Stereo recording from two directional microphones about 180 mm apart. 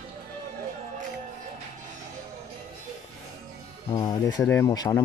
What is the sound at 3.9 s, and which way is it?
Speech, 20° left (ahead or behind).